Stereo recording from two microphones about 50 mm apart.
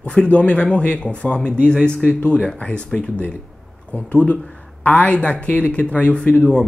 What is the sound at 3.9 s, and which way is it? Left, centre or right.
Speech, left.